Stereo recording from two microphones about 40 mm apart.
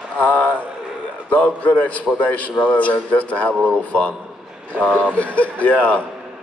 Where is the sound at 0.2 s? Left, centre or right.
Left.